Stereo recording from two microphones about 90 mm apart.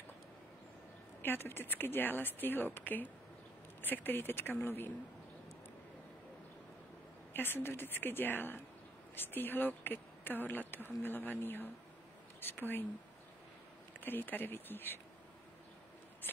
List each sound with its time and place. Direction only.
1.2 s speech: 25° left (ahead or behind)
7.3 s speech: 25° left (ahead or behind)
14.0 s speech: 20° left (ahead or behind)